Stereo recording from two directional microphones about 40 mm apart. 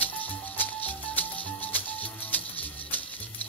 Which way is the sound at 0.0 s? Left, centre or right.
Left.